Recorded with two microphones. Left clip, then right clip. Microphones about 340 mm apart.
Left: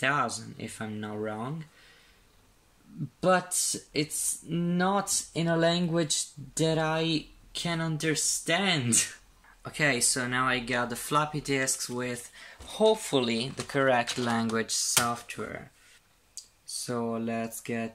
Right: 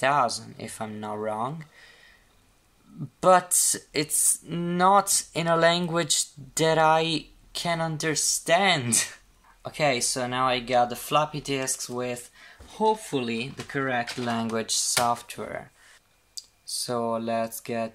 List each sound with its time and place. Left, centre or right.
0.0 s speech: centre
3.5 s speech: centre
13.1 s speech: centre